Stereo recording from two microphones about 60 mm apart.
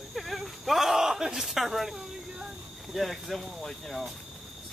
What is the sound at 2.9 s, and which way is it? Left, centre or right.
Speech, centre.